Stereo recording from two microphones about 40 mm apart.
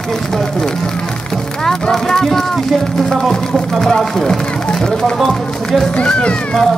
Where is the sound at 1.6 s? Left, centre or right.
Centre.